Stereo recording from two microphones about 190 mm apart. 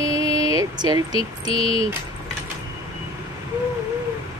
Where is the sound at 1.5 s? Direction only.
30° left (ahead or behind).